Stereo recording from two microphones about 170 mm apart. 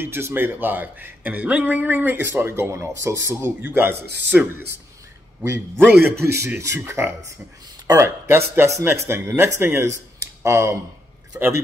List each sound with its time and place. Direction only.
0.0 s a man's voice: 15° right (ahead or behind)